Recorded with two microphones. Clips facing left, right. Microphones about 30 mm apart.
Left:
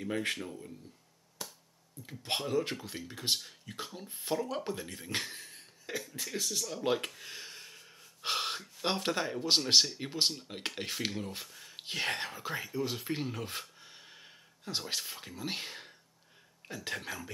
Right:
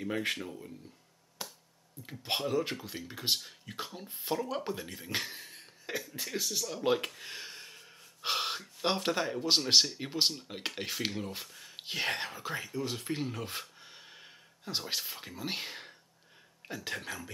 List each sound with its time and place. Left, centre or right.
0.0 s speech: centre
1.4 s finger snapping: right
2.0 s speech: centre